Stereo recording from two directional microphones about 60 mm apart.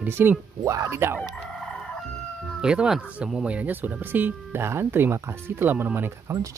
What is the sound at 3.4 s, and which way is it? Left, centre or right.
Speech, centre.